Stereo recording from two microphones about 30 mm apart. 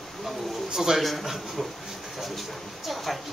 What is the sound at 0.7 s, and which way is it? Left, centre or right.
Speech, centre.